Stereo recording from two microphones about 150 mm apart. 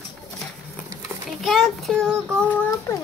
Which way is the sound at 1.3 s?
Centre (ahead or behind).